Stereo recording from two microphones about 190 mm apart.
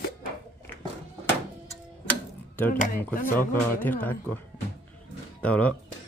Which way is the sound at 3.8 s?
10° left (ahead or behind).